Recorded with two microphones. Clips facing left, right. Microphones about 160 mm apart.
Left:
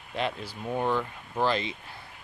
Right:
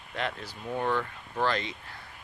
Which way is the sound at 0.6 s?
15° left (ahead or behind).